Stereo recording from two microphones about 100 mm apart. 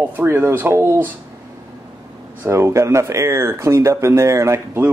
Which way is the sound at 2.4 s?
25° right (ahead or behind).